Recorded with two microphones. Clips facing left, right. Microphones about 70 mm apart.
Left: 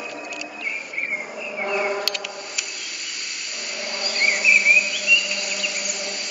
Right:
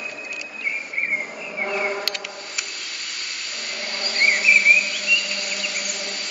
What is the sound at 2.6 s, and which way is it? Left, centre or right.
Insect, centre.